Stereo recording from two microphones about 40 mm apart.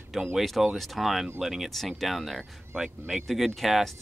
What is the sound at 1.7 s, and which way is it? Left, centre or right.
Speech, centre.